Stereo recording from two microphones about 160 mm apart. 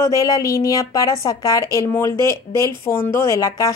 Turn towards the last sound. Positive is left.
turn(degrees=20)  # may be behind; listen again after turning